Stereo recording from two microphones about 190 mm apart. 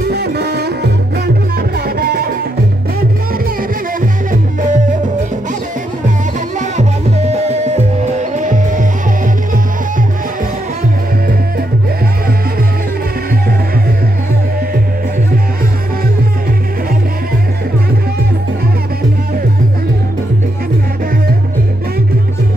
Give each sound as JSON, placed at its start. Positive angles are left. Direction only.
{"t": 0.1, "sound": "music", "side_deg": -60}
{"t": 4.0, "sound": "music", "side_deg": -45}
{"t": 6.6, "sound": "music", "side_deg": -35}